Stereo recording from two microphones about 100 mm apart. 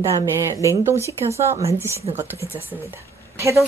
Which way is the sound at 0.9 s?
85° right.